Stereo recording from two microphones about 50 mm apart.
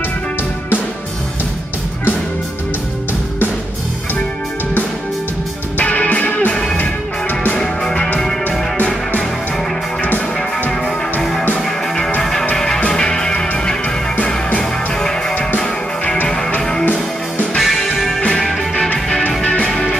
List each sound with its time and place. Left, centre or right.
5.8 s music: left
6.5 s music: centre
6.8 s music: left
7.5 s music: centre
8.5 s music: left
11.6 s music: centre
14.6 s music: centre
16.8 s music: left
17.6 s music: centre
19.4 s music: left